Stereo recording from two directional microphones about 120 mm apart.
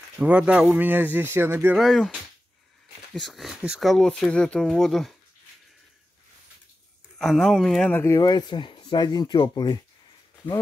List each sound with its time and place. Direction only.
0.2 s a man's voice: 10° right (ahead or behind)
1.8 s speech: centre (ahead or behind)
3.2 s speech: centre (ahead or behind)
7.2 s speech: centre (ahead or behind)
7.9 s speech: 20° left (ahead or behind)
8.2 s speech: 40° left (ahead or behind)